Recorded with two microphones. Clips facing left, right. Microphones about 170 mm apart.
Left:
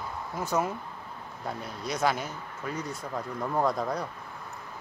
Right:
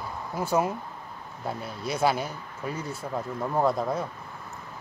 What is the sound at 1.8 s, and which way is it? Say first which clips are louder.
Speech: right 3 dB; 30° right (ahead or behind).